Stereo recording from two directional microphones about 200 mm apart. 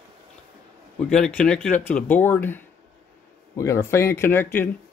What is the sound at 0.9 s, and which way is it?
A man's voice, 5° left (ahead or behind).